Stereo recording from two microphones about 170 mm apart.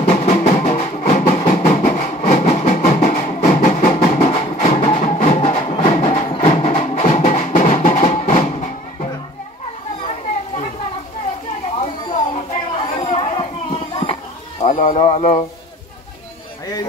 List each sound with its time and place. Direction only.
0.0 s music: 40° left (ahead or behind)
1.4 s music: 55° left (ahead or behind); by 8.6 s 40° left (ahead or behind)
11.8 s cat: 45° left (ahead or behind)
12.7 s children playing: 30° left (ahead or behind)
14.6 s a sound: 40° left (ahead or behind)